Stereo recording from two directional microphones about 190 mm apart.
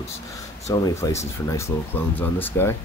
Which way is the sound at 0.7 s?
15° left (ahead or behind).